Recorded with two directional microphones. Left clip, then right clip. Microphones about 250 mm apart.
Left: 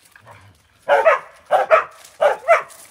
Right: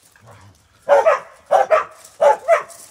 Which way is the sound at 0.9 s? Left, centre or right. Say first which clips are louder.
Right 2 dB; centre.